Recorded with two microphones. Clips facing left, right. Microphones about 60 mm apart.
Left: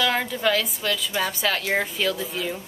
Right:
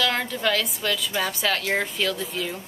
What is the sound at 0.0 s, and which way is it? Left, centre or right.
A woman's voice, centre.